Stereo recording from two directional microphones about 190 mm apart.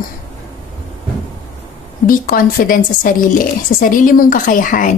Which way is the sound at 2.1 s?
50° left (ahead or behind).